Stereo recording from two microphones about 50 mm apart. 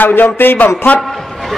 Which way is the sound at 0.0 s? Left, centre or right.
Left.